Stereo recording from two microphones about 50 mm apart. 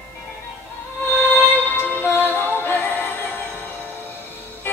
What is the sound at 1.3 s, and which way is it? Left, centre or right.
Music, left.